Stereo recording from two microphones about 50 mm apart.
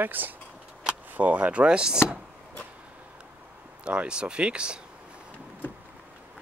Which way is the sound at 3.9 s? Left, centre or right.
Centre.